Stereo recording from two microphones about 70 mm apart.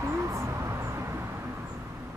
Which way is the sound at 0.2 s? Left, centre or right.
Right.